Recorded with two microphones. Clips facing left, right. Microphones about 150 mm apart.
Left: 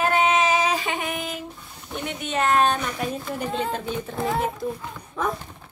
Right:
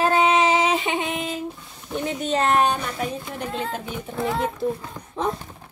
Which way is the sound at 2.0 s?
35° right (ahead or behind).